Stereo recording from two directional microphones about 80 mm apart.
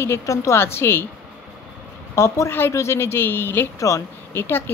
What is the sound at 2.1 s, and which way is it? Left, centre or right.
Speech, left.